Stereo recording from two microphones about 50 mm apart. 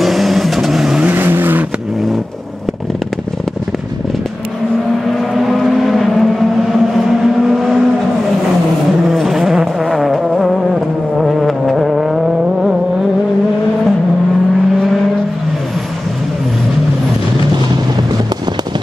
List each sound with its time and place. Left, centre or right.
0.0 s vehicle: centre
1.0 s vehicle: right
5.3 s vehicle: centre
9.1 s music: centre